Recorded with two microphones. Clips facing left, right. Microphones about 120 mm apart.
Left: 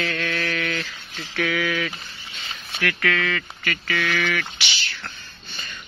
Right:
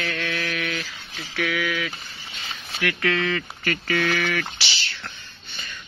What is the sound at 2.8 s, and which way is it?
Speech, 25° right (ahead or behind).